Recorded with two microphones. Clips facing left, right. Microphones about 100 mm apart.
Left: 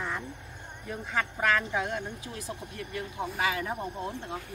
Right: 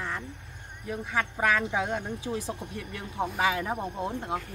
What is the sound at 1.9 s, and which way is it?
Speech, 25° right (ahead or behind).